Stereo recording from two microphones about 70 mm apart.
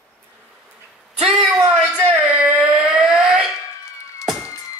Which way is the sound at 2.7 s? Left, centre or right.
Centre.